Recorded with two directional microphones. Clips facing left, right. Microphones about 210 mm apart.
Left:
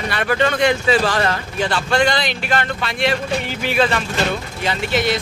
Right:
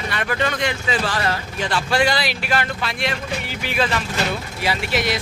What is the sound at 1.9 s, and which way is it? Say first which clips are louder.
Speech: left 1 dB; 5° right (ahead or behind).